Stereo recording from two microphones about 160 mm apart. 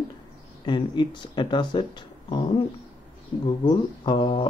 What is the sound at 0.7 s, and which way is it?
Speech, 30° left (ahead or behind).